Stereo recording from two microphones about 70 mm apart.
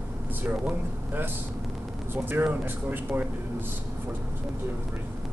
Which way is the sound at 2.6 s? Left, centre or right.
Right.